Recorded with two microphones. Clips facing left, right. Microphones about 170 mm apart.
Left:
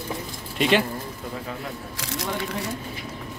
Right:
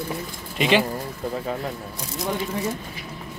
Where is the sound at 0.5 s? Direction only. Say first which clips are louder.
Right 1 dB; centre (ahead or behind).